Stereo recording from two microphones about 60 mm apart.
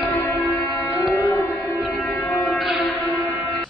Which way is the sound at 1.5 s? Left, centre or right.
Centre.